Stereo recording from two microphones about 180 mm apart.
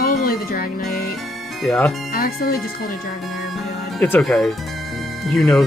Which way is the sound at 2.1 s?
55° left (ahead or behind).